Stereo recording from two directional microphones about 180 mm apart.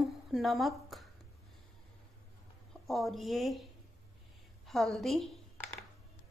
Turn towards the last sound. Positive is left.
turn(degrees=0)  # may be behind; listen again after turning